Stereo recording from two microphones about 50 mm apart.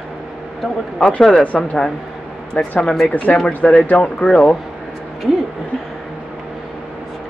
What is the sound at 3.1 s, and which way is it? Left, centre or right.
Speech, left.